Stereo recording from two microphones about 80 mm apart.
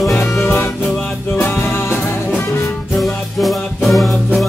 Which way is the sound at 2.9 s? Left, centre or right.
Centre.